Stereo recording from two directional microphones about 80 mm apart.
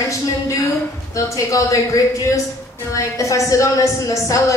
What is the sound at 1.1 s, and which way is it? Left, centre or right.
Speech, left.